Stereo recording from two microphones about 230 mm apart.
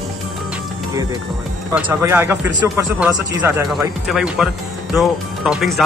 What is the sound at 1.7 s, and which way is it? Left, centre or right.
Speech, centre.